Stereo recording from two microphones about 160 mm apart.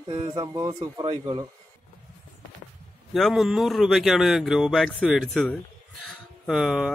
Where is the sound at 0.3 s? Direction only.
20° right (ahead or behind).